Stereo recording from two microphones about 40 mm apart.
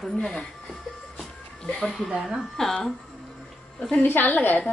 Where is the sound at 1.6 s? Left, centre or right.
Left.